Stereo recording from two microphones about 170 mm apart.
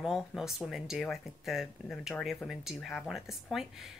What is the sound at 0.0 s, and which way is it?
Speech, centre (ahead or behind).